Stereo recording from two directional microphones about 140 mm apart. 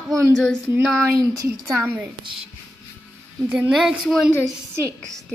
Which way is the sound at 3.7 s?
Centre (ahead or behind).